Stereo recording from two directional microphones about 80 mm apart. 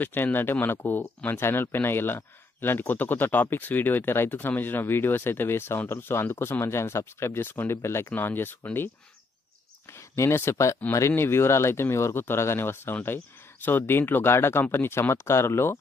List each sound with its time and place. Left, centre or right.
0.0 s speech: left
9.8 s speech: left